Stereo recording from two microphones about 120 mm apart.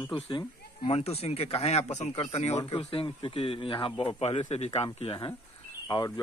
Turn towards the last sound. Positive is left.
turn(degrees=35)  # may be behind; listen again after turning